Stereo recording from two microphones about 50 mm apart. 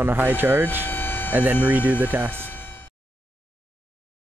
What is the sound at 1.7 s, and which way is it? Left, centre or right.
Speech, left.